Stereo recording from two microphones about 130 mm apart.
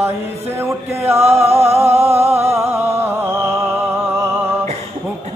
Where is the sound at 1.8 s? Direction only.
20° right (ahead or behind).